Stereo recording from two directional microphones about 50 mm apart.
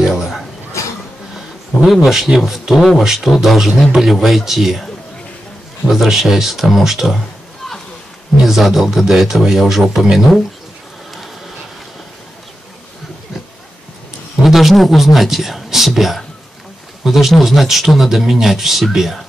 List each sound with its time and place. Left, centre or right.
0.0 s a sound: centre
0.8 s a sound: left
2.0 s a man's voice: centre
5.9 s a man's voice: centre
8.5 s a man's voice: centre
14.4 s a man's voice: centre